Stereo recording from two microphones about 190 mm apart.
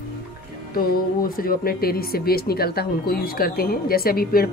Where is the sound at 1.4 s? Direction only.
50° left (ahead or behind).